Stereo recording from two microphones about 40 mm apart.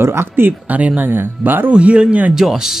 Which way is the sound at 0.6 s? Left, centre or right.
Right.